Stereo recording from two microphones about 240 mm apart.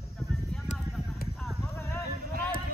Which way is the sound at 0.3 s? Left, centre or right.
Centre.